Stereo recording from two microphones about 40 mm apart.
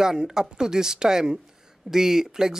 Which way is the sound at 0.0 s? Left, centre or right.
Centre.